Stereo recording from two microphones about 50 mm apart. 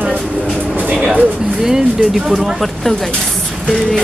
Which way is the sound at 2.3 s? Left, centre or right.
Centre.